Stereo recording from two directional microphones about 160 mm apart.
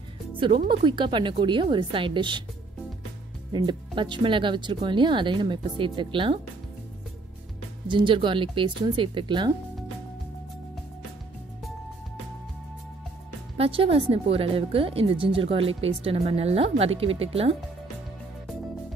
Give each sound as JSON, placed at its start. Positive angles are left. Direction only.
{"t": 0.7, "sound": "speech", "side_deg": -30}
{"t": 3.5, "sound": "speech", "side_deg": -30}
{"t": 7.9, "sound": "speech", "side_deg": -30}
{"t": 13.6, "sound": "speech", "side_deg": -35}